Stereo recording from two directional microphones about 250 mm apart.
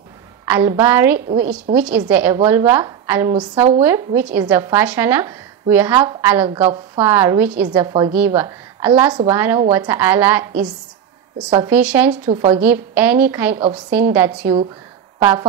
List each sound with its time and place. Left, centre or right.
0.5 s speech: centre
3.8 s speech: centre
11.5 s speech: centre
12.3 s a woman's voice: centre
12.5 s speech: centre